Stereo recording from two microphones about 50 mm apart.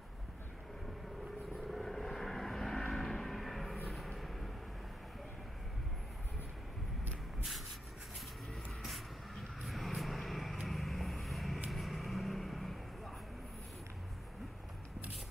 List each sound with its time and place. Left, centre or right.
1.6 s vehicle: centre
9.3 s vehicle: centre